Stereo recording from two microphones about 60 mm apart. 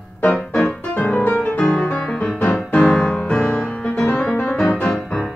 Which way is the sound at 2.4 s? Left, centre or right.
Centre.